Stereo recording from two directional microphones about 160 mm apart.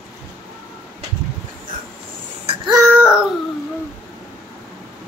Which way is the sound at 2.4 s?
30° right (ahead or behind).